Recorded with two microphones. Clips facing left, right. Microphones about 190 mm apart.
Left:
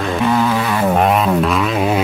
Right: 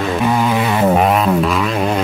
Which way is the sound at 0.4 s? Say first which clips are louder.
Right 1 dB; 15° right (ahead or behind).